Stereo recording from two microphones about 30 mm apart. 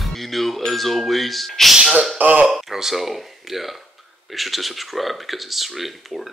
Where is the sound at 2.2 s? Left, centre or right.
Right.